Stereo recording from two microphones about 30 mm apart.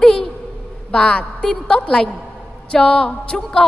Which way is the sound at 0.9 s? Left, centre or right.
Left.